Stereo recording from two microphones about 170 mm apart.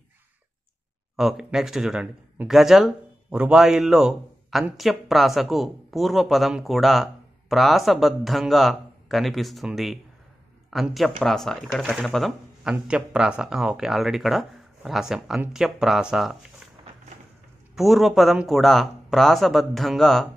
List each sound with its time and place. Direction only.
1.1 s speech: centre (ahead or behind)
17.7 s speech: centre (ahead or behind)